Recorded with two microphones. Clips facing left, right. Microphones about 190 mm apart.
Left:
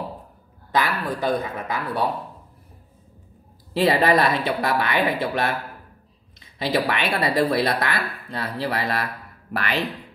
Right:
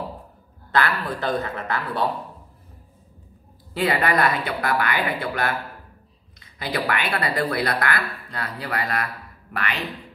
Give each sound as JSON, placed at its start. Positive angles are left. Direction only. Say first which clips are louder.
{"t": 0.7, "sound": "a man's voice", "louder": "even", "side_deg": 15}
{"t": 3.7, "sound": "speech", "louder": "left 4 dB", "side_deg": 25}